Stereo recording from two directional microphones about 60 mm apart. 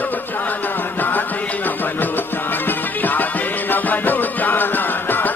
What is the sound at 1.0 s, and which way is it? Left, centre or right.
Music, left.